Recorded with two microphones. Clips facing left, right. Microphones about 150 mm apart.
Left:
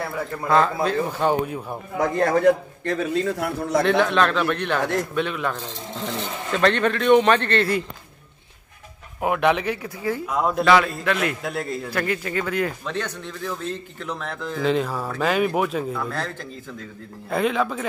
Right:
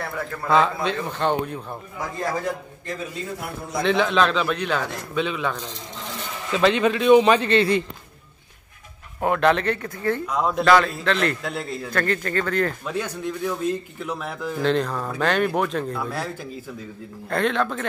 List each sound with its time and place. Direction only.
0.0 s a man's voice: 5° left (ahead or behind)
2.0 s a man's voice: 65° left (ahead or behind)
3.8 s a man's voice: centre (ahead or behind)
9.2 s a man's voice: 10° left (ahead or behind)
12.8 s a man's voice: 10° right (ahead or behind)
14.6 s a man's voice: 5° left (ahead or behind)
16.0 s a man's voice: 10° right (ahead or behind)
17.3 s a man's voice: 5° left (ahead or behind)